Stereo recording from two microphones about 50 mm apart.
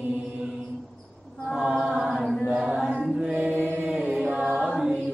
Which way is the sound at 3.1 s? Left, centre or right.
Centre.